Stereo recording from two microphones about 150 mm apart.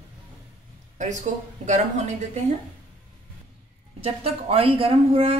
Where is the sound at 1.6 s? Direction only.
50° right (ahead or behind).